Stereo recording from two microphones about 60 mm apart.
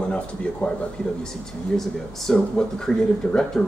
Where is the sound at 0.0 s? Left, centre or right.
Centre.